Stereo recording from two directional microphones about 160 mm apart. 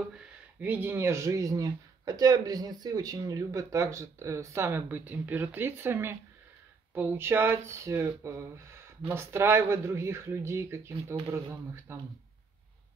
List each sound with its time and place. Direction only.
0.6 s speech: 10° right (ahead or behind)